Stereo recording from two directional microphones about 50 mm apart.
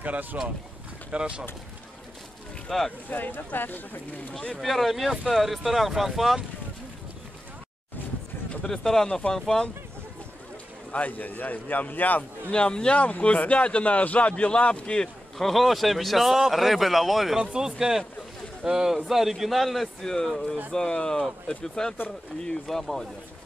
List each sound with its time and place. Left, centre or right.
0.0 s speech: right
1.1 s speech: right
2.7 s speech: centre
3.1 s speech: left
4.6 s speech: centre
8.6 s speech: centre
10.9 s a man's voice: left
12.4 s a man's voice: centre
15.3 s speech: centre